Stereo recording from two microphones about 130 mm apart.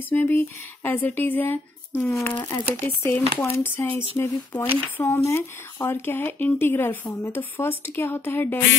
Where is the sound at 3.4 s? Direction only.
20° left (ahead or behind).